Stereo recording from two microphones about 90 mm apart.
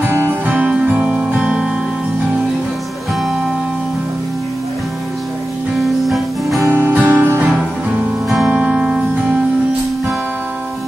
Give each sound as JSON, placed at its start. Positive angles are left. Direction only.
{"t": 0.1, "sound": "music", "side_deg": -20}
{"t": 6.0, "sound": "music", "side_deg": 0}
{"t": 6.6, "sound": "music", "side_deg": -20}
{"t": 8.5, "sound": "music", "side_deg": -10}